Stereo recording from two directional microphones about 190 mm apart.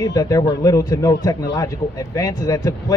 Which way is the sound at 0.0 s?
20° left (ahead or behind).